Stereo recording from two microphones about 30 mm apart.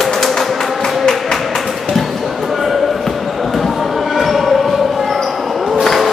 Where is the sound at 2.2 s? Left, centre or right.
Centre.